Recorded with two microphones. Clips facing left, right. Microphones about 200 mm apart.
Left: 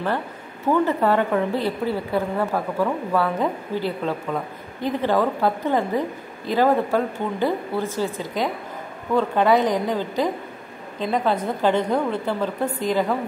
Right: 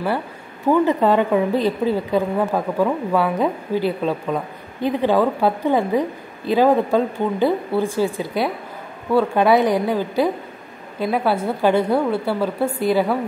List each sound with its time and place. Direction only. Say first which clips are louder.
0.8 s a woman's voice: right 3 dB; 15° right (ahead or behind)